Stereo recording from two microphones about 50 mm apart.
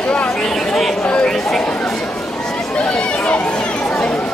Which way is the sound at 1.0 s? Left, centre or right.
Centre.